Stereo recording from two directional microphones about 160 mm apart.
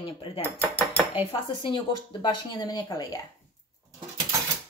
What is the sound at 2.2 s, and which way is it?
Speech, 30° left (ahead or behind).